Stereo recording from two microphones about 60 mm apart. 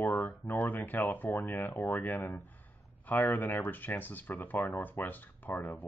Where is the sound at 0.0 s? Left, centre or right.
Left.